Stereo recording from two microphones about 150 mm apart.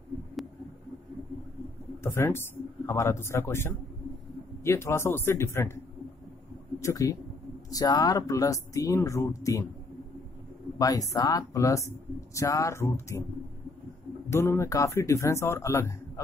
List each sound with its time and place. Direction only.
2.0 s speech: 15° left (ahead or behind)
6.8 s speech: 20° left (ahead or behind)
10.8 s speech: 25° left (ahead or behind)
14.3 s speech: 15° left (ahead or behind)